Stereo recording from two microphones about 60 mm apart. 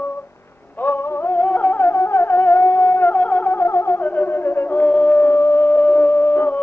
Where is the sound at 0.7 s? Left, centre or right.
Left.